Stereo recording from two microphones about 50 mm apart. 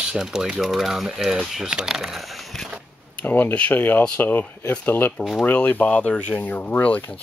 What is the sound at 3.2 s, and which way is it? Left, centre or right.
Speech, left.